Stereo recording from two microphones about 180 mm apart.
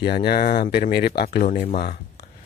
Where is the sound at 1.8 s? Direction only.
60° left (ahead or behind).